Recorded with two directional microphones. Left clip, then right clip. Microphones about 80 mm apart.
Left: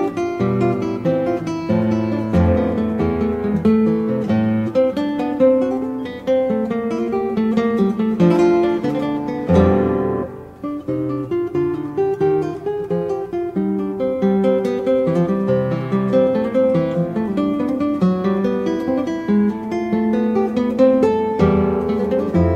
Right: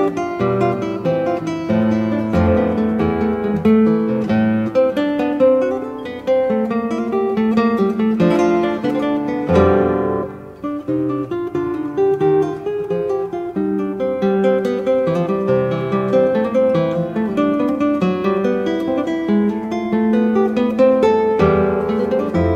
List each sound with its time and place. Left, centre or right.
0.0 s guitar: left
5.4 s music: left
7.2 s guitar: left
9.5 s music: left
12.0 s music: left
14.2 s music: left